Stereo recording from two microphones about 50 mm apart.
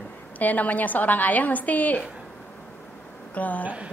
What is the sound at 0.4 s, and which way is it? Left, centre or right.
A woman's voice, left.